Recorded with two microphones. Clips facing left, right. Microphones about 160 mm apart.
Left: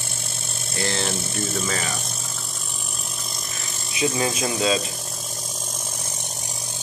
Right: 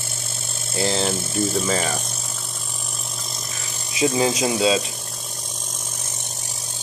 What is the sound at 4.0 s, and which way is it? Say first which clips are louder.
Speech: right 4 dB; 20° right (ahead or behind).